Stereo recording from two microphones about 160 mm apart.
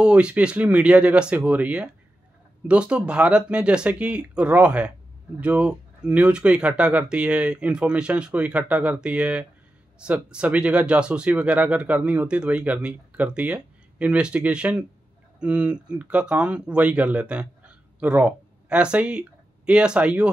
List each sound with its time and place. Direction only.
0.0 s speech: 5° right (ahead or behind)